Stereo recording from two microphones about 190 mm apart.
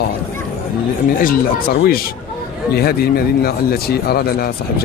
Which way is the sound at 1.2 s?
50° left (ahead or behind).